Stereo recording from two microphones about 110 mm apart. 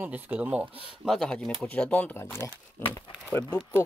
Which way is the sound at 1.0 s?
5° left (ahead or behind).